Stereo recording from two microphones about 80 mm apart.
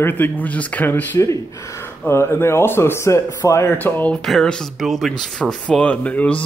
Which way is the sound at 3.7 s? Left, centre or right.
Left.